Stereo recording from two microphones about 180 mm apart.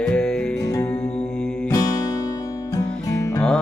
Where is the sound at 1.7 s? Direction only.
20° left (ahead or behind).